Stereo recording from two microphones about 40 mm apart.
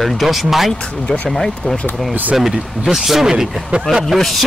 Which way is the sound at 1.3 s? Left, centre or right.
Centre.